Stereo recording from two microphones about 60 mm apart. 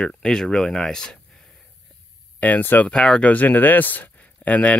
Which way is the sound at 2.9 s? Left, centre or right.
Centre.